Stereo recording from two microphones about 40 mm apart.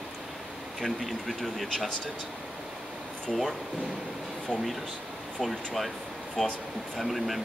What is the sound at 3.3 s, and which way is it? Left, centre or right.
Speech, centre.